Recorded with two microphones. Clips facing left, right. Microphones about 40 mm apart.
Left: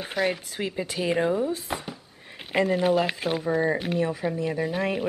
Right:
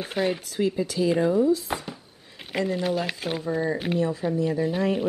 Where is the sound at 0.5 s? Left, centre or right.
Left.